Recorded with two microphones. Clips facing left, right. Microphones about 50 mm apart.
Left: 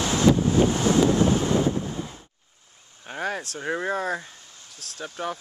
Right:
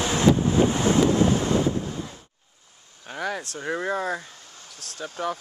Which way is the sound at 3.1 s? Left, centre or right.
Centre.